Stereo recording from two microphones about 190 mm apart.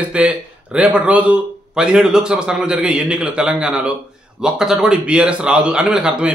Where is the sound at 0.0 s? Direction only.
5° right (ahead or behind).